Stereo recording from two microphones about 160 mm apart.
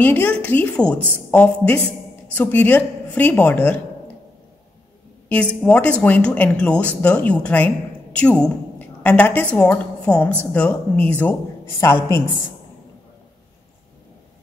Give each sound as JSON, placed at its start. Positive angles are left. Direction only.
{"t": 0.0, "sound": "speech", "side_deg": 10}
{"t": 5.3, "sound": "speech", "side_deg": 10}